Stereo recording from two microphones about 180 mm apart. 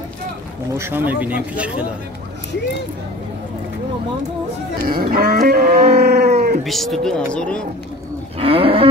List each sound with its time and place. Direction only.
0.7 s speech: 10° right (ahead or behind)
4.8 s livestock: 55° right (ahead or behind)
6.3 s cat: 45° right (ahead or behind)
6.6 s speech: centre (ahead or behind)
8.4 s cattle: 30° right (ahead or behind)